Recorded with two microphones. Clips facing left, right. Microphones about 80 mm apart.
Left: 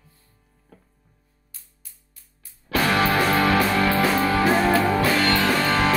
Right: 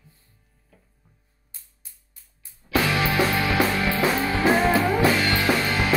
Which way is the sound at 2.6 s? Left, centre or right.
Left.